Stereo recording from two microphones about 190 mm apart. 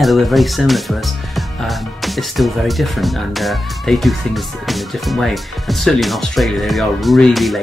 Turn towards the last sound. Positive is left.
turn(degrees=0)  # may be behind; listen again after turning